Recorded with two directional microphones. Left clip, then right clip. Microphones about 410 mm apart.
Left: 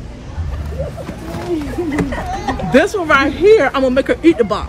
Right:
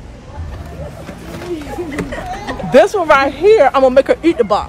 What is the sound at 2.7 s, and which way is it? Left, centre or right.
A woman's voice, centre.